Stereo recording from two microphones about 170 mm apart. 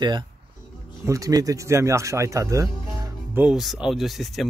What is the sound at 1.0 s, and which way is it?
Speech, 20° right (ahead or behind).